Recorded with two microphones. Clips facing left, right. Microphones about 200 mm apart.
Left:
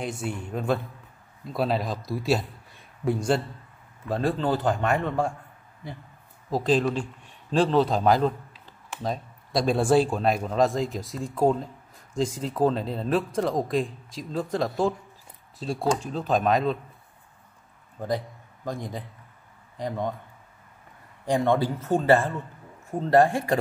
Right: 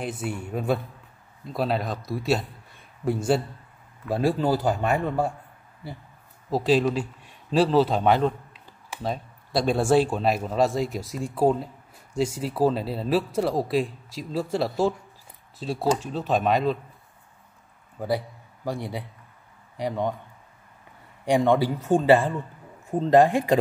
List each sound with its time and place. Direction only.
0.0 s speech: 5° right (ahead or behind)
6.5 s speech: 5° right (ahead or behind)
17.9 s a man's voice: 5° right (ahead or behind)
21.4 s speech: 15° right (ahead or behind)